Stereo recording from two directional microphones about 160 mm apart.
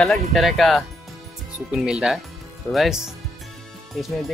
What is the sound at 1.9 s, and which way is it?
Speech, 5° right (ahead or behind).